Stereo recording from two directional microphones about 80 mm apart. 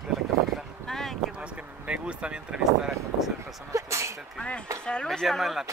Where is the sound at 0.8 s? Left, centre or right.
Centre.